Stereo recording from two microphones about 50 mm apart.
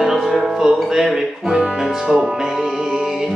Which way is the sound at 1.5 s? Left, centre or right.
Centre.